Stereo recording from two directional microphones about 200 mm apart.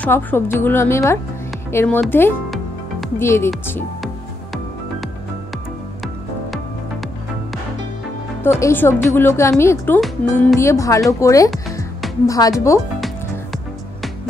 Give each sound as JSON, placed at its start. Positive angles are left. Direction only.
{"t": 0.0, "sound": "speech", "side_deg": 10}
{"t": 8.5, "sound": "speech", "side_deg": 15}